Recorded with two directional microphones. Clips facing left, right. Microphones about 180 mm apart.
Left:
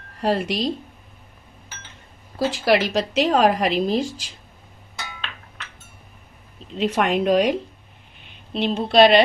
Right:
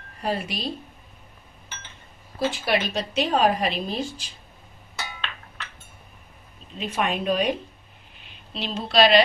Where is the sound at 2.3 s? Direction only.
90° left.